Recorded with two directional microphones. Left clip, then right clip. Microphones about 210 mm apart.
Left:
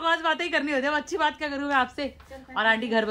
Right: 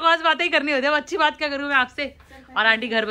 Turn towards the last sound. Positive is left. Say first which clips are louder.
# right 4 dB
turn(degrees=15)  # may be behind; listen again after turning